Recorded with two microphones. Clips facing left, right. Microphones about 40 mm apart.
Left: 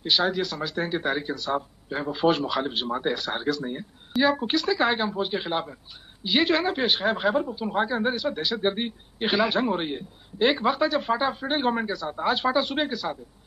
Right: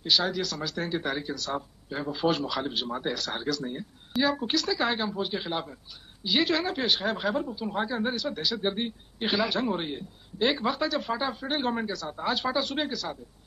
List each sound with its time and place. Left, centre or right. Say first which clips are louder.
0.0 s speech: left 3 dB; centre